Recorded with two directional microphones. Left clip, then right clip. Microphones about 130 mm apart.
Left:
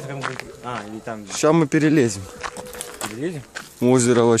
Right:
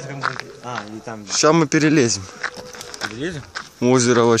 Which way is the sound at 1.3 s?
Centre (ahead or behind).